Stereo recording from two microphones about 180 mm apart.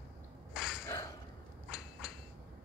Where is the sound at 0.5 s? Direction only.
Centre (ahead or behind).